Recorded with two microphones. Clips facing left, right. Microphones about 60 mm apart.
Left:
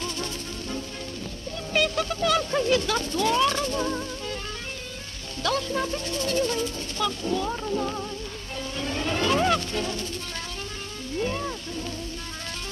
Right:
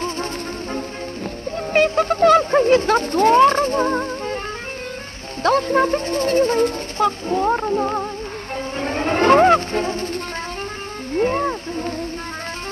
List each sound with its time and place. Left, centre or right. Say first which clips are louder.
0.0 s music: right 7 dB; right
1.7 s speech: right 8 dB; right
5.4 s speech: right 10 dB; right
8.7 s music: right 8 dB; right
11.1 s a sound: right 10 dB; right